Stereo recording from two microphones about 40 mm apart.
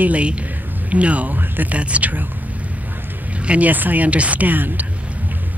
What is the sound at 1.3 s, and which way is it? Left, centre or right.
Speech, right.